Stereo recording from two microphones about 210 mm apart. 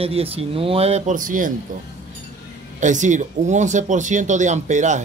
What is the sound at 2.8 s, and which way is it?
Speech, 35° right (ahead or behind).